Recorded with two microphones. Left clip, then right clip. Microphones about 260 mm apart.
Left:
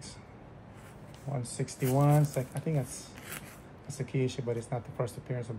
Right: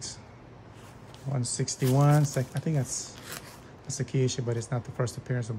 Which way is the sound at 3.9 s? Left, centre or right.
Right.